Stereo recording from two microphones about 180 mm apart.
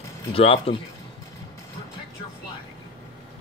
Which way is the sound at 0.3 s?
30° left (ahead or behind).